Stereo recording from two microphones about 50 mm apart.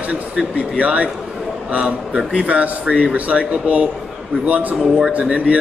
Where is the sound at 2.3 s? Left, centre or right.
Right.